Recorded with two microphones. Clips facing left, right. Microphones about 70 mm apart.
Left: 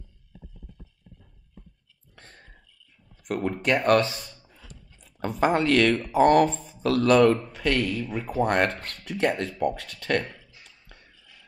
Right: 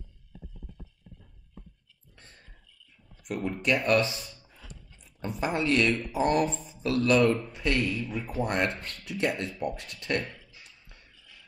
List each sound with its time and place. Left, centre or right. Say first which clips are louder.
2.1 s a sound: left 5 dB; left
3.3 s speech: left 3 dB; left
5.4 s speech: left 7 dB; left
5.7 s speech: left 1 dB; left
6.1 s speech: left 9 dB; left
6.8 s speech: left 5 dB; left
9.0 s speech: left 4 dB; left
10.4 s a sound: even; left